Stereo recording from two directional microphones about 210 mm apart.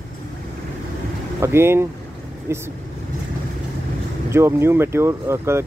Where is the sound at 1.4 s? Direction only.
10° right (ahead or behind).